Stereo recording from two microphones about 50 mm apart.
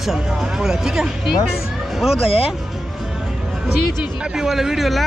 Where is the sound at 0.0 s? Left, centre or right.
Centre.